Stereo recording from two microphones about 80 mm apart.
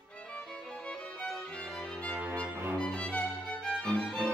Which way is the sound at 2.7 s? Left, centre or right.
Centre.